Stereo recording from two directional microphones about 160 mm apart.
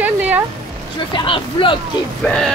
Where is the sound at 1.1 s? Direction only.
30° left (ahead or behind).